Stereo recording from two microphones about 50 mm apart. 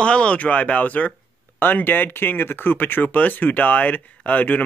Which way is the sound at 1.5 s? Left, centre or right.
Left.